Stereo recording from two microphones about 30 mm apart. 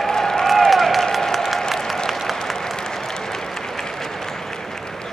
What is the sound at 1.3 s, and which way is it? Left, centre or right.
Applause, centre.